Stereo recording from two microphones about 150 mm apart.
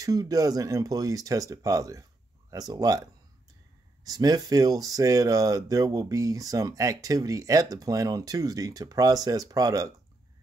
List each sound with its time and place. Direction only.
0.0 s speech: 25° right (ahead or behind)